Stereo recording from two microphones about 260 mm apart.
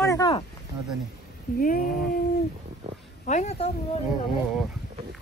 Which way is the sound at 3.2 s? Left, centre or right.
Left.